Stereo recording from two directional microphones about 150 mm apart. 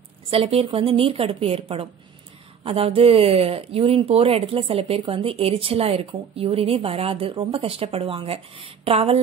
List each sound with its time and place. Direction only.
0.3 s speech: 40° right (ahead or behind)